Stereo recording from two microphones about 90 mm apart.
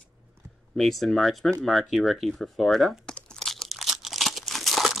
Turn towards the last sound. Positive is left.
turn(degrees=0)  # may be behind; listen again after turning